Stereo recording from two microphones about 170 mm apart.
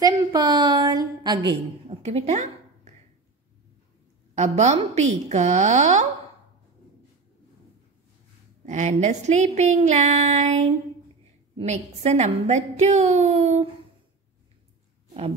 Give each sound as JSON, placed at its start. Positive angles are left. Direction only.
{"t": 0.0, "sound": "a woman's voice", "side_deg": -25}
{"t": 2.0, "sound": "speech", "side_deg": -40}
{"t": 4.4, "sound": "speech", "side_deg": -40}
{"t": 8.6, "sound": "a woman's voice", "side_deg": -45}